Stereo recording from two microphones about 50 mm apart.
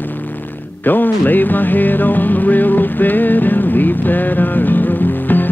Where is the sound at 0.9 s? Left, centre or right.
Left.